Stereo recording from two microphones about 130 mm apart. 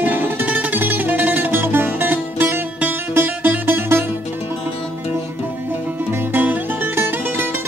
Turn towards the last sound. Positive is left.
turn(degrees=-15)  # may be behind; listen again after turning